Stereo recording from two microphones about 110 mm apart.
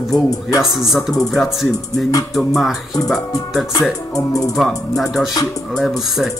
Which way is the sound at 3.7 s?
30° left (ahead or behind).